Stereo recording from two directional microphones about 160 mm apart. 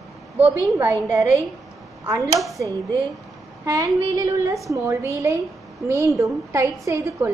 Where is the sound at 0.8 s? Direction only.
15° right (ahead or behind).